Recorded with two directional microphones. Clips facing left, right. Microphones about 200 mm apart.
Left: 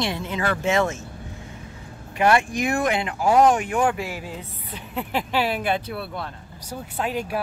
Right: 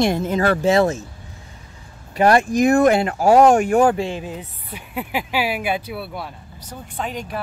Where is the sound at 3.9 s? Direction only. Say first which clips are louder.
Right 6 dB; 25° right (ahead or behind).